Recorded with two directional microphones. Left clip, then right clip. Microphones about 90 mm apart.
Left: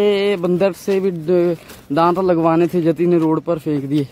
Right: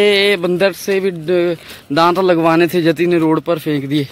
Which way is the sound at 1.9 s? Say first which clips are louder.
Right 3 dB; 10° left (ahead or behind).